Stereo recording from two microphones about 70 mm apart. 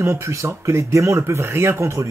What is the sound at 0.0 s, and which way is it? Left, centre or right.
Speech, right.